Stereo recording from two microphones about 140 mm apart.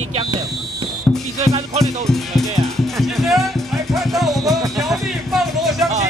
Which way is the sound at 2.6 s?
Centre (ahead or behind).